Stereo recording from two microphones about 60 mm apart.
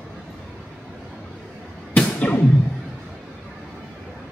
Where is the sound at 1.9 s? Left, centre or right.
Left.